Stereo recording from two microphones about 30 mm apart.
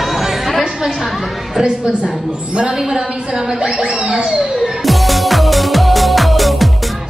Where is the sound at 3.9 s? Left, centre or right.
Right.